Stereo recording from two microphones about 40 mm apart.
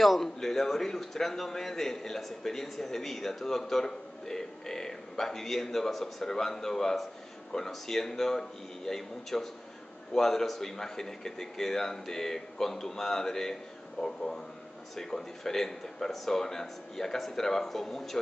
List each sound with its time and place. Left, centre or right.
0.2 s a man's voice: centre